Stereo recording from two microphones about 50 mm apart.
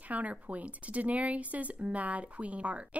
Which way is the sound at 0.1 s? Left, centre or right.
Right.